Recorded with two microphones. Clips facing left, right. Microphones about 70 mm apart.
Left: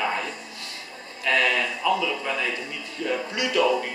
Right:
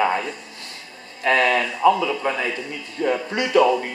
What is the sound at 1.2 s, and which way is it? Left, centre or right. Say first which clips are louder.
A man's voice: right 4 dB; right.